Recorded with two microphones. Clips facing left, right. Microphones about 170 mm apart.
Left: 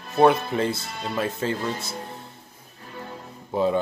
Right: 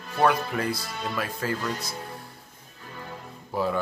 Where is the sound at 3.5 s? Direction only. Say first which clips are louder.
Left 5 dB; 20° left (ahead or behind).